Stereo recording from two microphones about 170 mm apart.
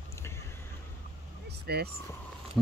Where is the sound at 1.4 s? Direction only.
70° right (ahead or behind).